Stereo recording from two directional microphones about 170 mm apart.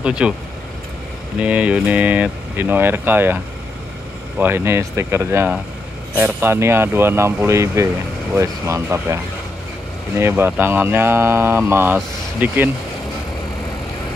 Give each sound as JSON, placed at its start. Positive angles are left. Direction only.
{"t": 0.0, "sound": "speech", "side_deg": -5}
{"t": 1.4, "sound": "speech", "side_deg": -10}
{"t": 4.4, "sound": "speech", "side_deg": -15}